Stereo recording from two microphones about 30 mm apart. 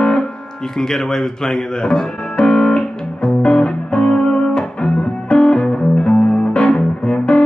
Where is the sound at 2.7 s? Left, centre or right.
Left.